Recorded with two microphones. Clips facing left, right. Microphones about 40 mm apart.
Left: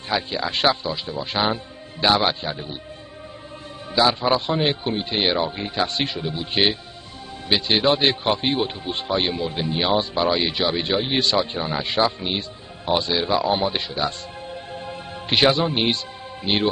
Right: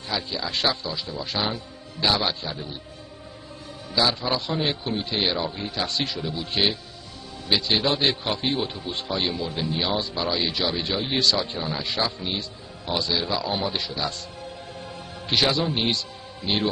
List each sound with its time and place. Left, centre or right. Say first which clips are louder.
0.1 s a man's voice: left 5 dB; left
3.9 s a man's voice: left 5 dB; left